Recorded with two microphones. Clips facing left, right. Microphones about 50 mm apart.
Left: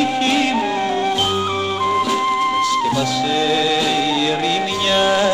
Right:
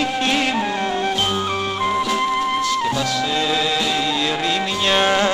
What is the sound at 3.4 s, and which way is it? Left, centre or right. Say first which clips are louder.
Music: left 3 dB; left.